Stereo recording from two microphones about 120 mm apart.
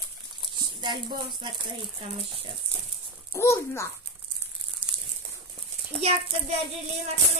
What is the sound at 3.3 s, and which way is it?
Speech, 20° left (ahead or behind).